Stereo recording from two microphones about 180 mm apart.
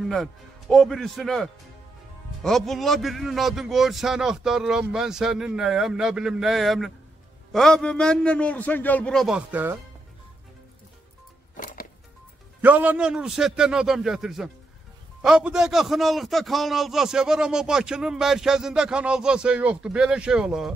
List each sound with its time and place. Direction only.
0.0 s a man's voice: centre (ahead or behind)
11.5 s music: 50° left (ahead or behind)
12.6 s a man's voice: 10° right (ahead or behind)